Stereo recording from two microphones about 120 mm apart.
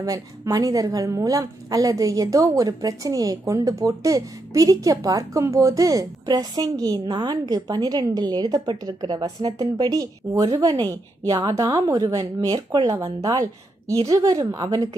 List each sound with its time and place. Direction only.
0.0 s a woman's voice: 30° right (ahead or behind)